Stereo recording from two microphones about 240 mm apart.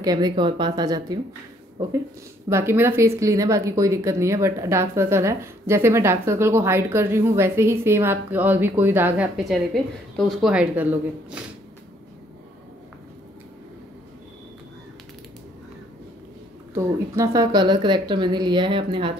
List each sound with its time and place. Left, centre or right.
0.0 s a woman's voice: centre
16.7 s speech: centre